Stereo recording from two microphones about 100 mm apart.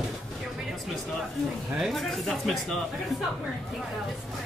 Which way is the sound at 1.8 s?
Centre (ahead or behind).